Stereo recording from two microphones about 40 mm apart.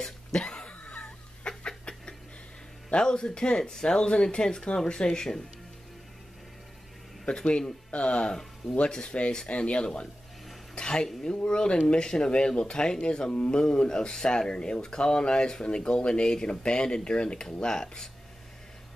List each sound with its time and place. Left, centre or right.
0.3 s cough: left
1.6 s a sound: left
2.9 s speech: left
7.2 s speech: left
8.3 s speech: centre
9.5 s speech: left
10.7 s a sound: left
11.4 s speech: left